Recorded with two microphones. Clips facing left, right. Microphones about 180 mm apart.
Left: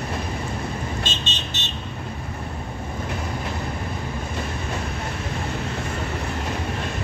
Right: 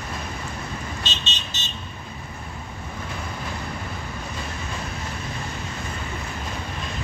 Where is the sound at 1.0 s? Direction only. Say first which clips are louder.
Left 3 dB; 55° left (ahead or behind).